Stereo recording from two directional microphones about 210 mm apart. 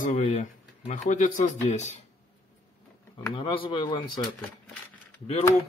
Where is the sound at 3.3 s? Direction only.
25° left (ahead or behind).